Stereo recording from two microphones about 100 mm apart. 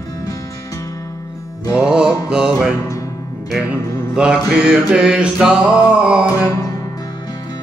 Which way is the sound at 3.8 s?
30° left (ahead or behind).